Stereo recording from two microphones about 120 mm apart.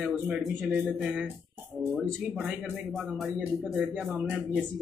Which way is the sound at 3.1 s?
Centre (ahead or behind).